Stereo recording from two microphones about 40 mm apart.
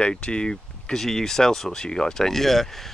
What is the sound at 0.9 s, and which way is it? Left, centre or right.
Speech, centre.